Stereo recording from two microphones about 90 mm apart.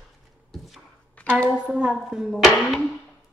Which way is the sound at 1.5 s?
10° right (ahead or behind).